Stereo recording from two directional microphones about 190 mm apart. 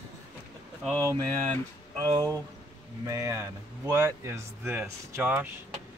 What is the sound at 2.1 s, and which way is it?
Speech, 20° right (ahead or behind).